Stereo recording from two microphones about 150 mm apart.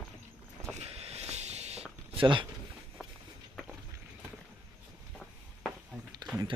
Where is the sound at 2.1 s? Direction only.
35° right (ahead or behind).